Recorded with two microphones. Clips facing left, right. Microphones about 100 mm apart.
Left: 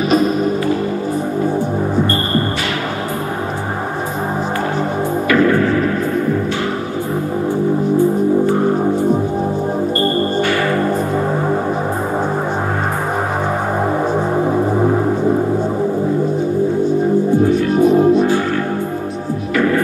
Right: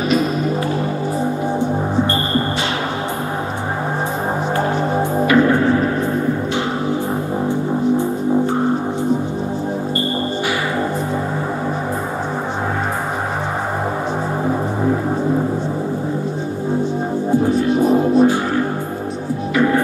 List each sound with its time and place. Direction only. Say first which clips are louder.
0.1 s music: left 4 dB; 40° left (ahead or behind)
5.3 s music: left 1 dB; 25° right (ahead or behind)
17.8 s music: left 2 dB; 35° right (ahead or behind)
19.5 s hum: even; 20° right (ahead or behind)